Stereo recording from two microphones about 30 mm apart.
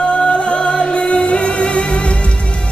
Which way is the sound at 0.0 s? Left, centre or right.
Left.